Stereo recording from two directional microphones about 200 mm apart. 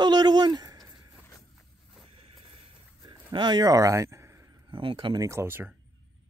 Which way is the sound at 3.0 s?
20° right (ahead or behind).